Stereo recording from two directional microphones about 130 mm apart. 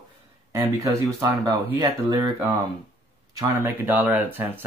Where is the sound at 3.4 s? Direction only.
15° right (ahead or behind).